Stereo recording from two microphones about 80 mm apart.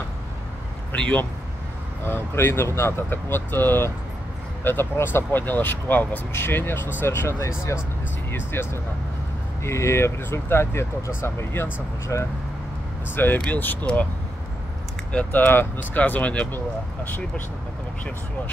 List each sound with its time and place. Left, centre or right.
0.9 s speech: centre
2.0 s speech: left
15.1 s speech: left